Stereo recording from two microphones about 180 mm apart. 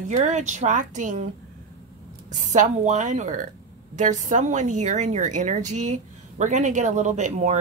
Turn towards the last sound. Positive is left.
turn(degrees=-40)  # may be behind; listen again after turning